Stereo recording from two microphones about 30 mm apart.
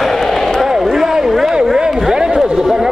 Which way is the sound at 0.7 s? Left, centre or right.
Centre.